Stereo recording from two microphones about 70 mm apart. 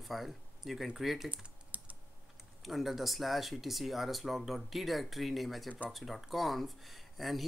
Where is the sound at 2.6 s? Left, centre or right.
Centre.